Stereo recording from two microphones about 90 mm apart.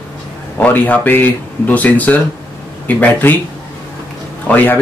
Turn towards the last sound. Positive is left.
turn(degrees=20)  # may be behind; listen again after turning